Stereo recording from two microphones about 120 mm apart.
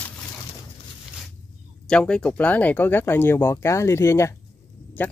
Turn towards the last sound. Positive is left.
turn(degrees=15)  # may be behind; listen again after turning